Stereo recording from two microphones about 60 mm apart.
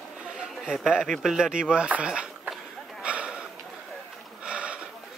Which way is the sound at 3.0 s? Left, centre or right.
Centre.